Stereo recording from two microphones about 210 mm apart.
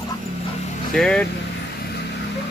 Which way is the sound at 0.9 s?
5° left (ahead or behind).